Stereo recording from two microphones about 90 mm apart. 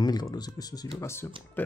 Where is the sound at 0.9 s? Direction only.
30° left (ahead or behind).